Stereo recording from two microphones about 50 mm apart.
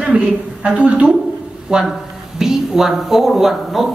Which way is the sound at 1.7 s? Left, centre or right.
Centre.